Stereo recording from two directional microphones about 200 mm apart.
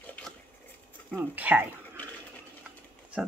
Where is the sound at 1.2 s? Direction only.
10° right (ahead or behind).